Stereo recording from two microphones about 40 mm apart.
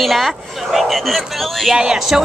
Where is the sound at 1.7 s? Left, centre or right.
Centre.